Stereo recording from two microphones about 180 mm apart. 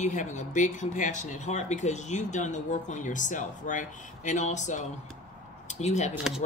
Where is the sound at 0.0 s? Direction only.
45° left (ahead or behind).